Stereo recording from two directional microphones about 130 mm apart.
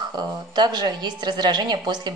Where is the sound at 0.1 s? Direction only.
35° right (ahead or behind).